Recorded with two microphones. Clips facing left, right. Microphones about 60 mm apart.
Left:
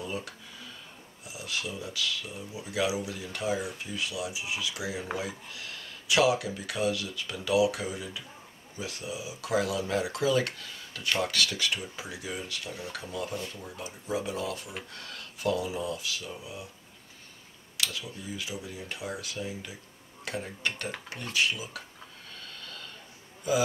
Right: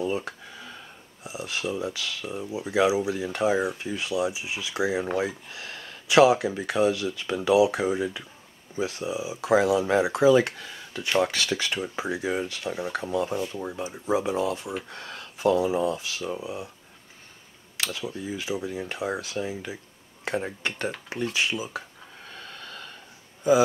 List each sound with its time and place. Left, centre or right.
0.0 s a sound: right
1.2 s speech: right
17.7 s speech: right